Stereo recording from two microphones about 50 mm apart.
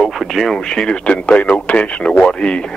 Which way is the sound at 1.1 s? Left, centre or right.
Left.